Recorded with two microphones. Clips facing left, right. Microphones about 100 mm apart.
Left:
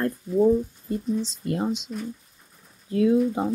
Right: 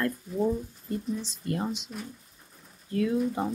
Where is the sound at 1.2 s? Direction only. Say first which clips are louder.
Left 5 dB; 20° left (ahead or behind).